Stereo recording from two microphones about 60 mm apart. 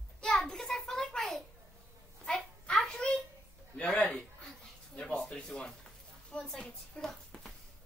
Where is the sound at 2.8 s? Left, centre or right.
Centre.